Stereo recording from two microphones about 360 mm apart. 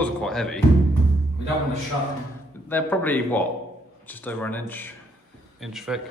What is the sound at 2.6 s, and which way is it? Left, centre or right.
A man's voice, centre.